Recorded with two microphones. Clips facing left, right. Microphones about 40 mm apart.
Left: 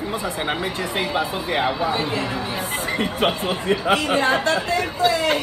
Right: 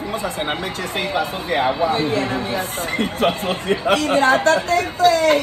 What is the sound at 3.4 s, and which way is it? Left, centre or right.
Speech, right.